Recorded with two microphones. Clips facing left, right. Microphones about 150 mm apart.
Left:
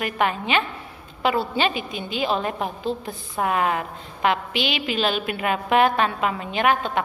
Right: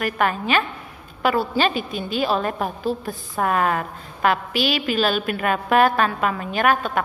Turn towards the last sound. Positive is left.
turn(degrees=20)  # may be behind; listen again after turning